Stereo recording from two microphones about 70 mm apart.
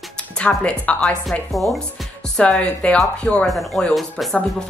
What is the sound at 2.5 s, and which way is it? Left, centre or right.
Speech, centre.